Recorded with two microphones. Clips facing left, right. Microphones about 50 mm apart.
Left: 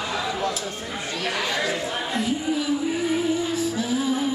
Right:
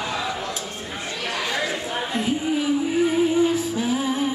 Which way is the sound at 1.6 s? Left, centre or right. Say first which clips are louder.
Even; right.